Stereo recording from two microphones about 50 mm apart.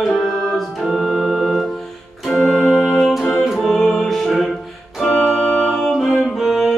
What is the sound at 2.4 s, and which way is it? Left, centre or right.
Music, centre.